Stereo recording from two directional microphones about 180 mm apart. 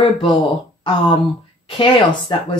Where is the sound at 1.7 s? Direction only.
25° left (ahead or behind).